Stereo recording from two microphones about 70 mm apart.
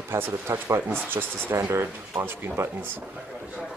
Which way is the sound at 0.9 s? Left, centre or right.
Right.